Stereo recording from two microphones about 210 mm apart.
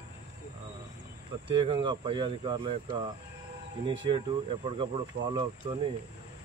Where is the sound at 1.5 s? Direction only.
25° right (ahead or behind).